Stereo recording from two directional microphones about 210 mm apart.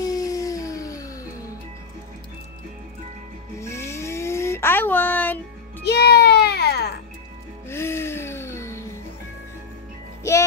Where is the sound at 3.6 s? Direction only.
15° left (ahead or behind).